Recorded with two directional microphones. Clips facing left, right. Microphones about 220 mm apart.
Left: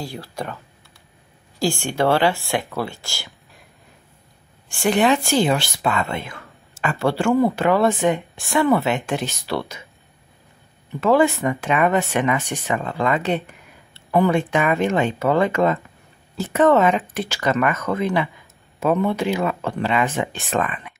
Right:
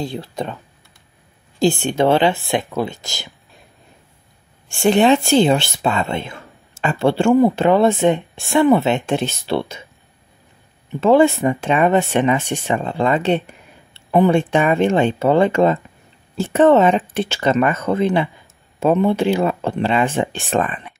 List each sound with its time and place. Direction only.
0.0 s speech: 20° right (ahead or behind)
1.6 s speech: 20° right (ahead or behind)
4.6 s speech: 25° right (ahead or behind)
10.9 s speech: 25° right (ahead or behind)